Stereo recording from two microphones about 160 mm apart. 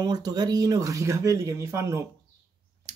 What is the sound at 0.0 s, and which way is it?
Speech, 25° right (ahead or behind).